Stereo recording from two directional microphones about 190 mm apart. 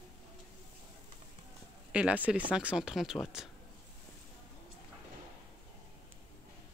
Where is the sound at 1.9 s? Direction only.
5° right (ahead or behind).